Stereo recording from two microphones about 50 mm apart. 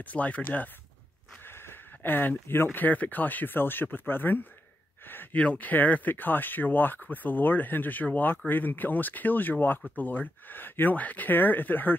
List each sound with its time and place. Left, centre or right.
0.0 s speech: left
1.4 s speech: left
5.0 s a sound: left
5.3 s speech: left